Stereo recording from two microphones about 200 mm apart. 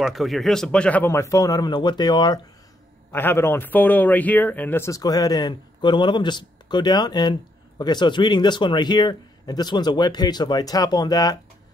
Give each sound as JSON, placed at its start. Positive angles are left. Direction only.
{"t": 0.0, "sound": "a man's voice", "side_deg": 0}
{"t": 3.1, "sound": "a man's voice", "side_deg": 10}